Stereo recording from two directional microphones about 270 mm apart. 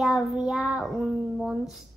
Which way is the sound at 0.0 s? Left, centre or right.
Centre.